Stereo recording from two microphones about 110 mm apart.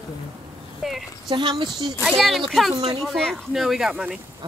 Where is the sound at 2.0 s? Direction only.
Centre (ahead or behind).